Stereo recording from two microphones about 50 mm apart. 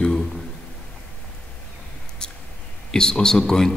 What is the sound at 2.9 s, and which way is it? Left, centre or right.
Speech, centre.